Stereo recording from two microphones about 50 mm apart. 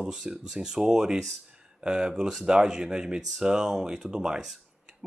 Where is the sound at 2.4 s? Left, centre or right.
Centre.